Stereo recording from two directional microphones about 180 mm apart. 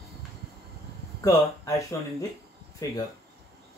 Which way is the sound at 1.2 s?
15° left (ahead or behind).